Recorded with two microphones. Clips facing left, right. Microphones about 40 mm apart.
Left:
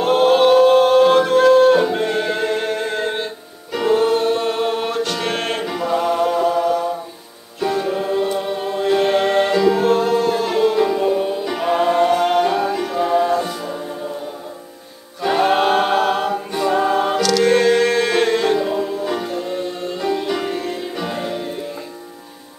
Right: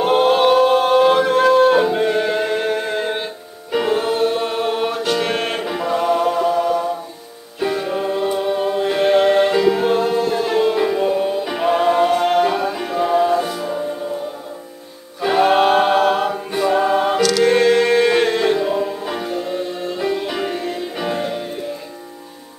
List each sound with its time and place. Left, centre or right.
0.0 s music: centre
15.2 s a capella: centre